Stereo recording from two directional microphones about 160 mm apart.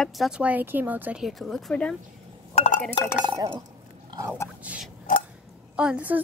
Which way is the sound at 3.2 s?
25° right (ahead or behind).